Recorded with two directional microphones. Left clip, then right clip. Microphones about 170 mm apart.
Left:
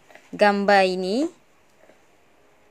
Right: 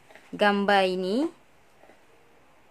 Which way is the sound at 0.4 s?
15° left (ahead or behind).